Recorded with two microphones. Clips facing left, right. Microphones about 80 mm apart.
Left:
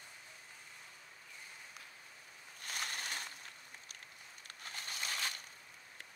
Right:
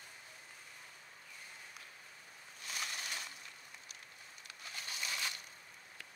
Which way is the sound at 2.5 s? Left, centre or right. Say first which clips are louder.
Left 1 dB; left.